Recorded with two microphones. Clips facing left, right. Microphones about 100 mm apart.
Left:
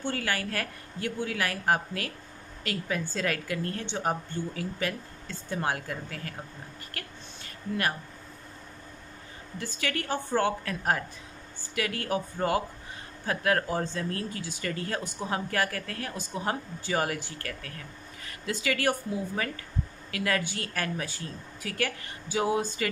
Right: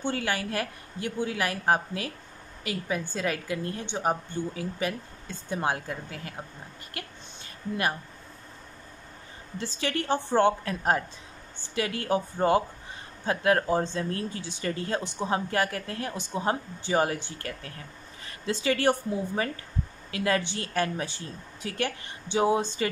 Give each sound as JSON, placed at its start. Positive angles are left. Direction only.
{"t": 0.0, "sound": "speech", "side_deg": -20}
{"t": 6.9, "sound": "a sound", "side_deg": -20}
{"t": 9.6, "sound": "speech", "side_deg": -25}